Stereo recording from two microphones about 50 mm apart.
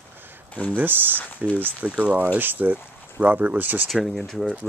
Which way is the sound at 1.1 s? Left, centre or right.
Left.